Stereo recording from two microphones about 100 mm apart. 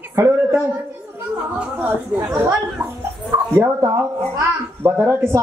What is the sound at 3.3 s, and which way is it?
A woman's voice, 30° right (ahead or behind).